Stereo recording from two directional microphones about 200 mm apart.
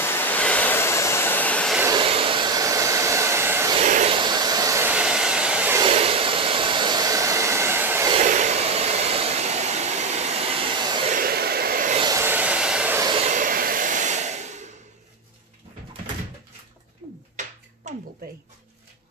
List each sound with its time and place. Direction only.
0.0 s vehicle: 10° left (ahead or behind)
2.0 s hair dryer: 25° right (ahead or behind)
3.8 s vehicle: 35° right (ahead or behind)
4.2 s hair dryer: 20° right (ahead or behind)
5.8 s hair dryer: 30° right (ahead or behind); by 8.1 s 10° right (ahead or behind)
8.1 s hair dryer: 35° right (ahead or behind)
11.1 s a sound: 45° right (ahead or behind)
12.0 s vehicle: 15° right (ahead or behind)
13.0 s vehicle: 25° right (ahead or behind)
13.3 s hair dryer: 40° right (ahead or behind)
17.8 s a sound: 35° right (ahead or behind)